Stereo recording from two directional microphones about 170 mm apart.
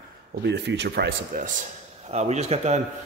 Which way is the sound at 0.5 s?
90° right.